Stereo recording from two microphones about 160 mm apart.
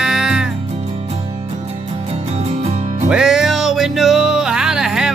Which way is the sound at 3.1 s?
5° right (ahead or behind).